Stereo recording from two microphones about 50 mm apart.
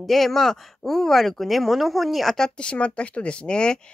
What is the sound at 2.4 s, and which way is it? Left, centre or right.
Speech, left.